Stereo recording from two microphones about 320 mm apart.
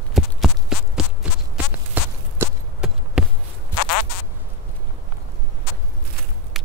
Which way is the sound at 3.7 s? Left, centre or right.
Left.